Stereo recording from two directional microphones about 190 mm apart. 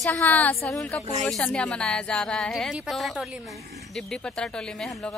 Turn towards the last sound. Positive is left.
turn(degrees=0)  # may be behind; listen again after turning